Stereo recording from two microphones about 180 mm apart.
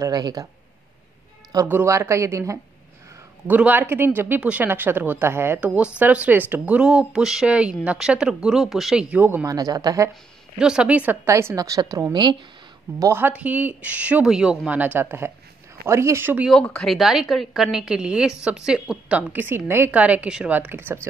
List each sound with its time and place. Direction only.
0.0 s speech: 20° right (ahead or behind)
1.5 s speech: 15° right (ahead or behind)
10.6 s speech: 5° right (ahead or behind); by 12.4 s 25° right (ahead or behind)
13.0 s speech: 10° right (ahead or behind)
16.4 s a woman's voice: 5° left (ahead or behind)